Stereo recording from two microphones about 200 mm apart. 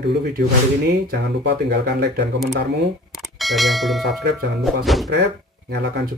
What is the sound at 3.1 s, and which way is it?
Speech, centre (ahead or behind).